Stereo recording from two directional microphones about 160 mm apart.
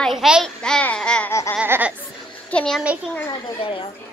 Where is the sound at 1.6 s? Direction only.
10° right (ahead or behind).